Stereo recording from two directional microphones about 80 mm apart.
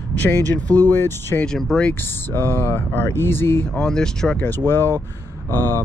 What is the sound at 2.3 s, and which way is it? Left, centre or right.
Speech, left.